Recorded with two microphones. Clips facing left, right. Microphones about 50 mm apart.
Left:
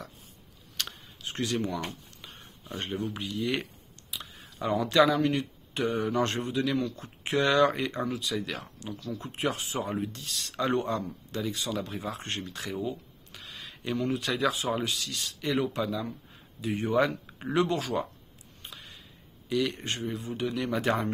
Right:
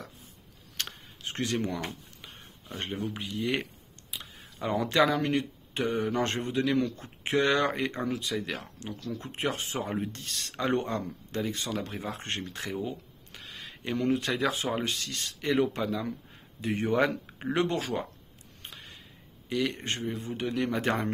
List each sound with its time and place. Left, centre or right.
0.7 s a sound: right
2.7 s speech: right
4.7 s speech: right
11.3 s speech: right
14.1 s speech: right
16.6 s speech: right
19.5 s speech: right